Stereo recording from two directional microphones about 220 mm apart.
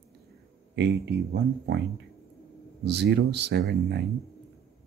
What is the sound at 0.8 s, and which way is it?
Speech, 50° right (ahead or behind).